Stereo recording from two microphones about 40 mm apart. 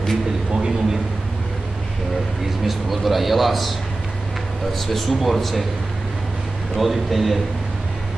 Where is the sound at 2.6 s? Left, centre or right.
Centre.